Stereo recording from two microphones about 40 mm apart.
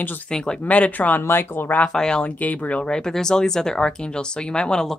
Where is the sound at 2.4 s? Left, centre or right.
Left.